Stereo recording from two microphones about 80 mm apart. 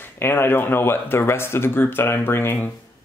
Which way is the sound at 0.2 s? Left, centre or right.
Left.